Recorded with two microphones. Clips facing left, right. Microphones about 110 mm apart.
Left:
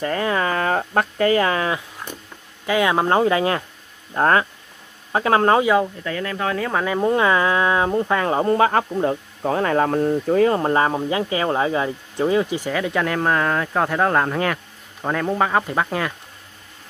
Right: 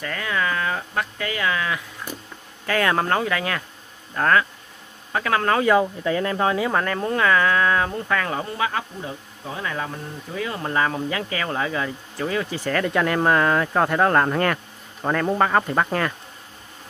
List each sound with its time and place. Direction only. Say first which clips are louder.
0.0 s speech: left 5 dB; 35° left (ahead or behind)
2.6 s speech: left 3 dB; 15° left (ahead or behind)
3.2 s speech: left 6 dB; 25° left (ahead or behind)
6.0 s speech: right 3 dB; 30° right (ahead or behind)
6.7 s speech: left 2 dB; 10° left (ahead or behind)
7.1 s speech: left 2 dB; 20° left (ahead or behind)
8.5 s speech: left 9 dB; 45° left (ahead or behind); by 16.1 s 5° left (ahead or behind)